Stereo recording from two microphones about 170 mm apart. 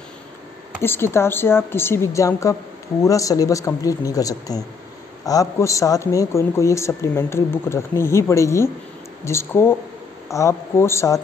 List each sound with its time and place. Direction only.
0.8 s a man's voice: 15° left (ahead or behind)